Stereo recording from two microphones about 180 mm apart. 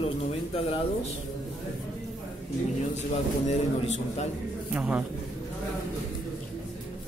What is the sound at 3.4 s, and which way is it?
Speech, 40° left (ahead or behind).